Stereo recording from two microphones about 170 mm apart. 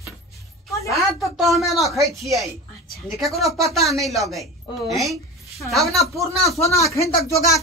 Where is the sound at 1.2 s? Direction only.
Centre (ahead or behind).